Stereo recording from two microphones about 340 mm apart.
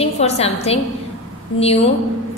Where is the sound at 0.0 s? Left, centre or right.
Centre.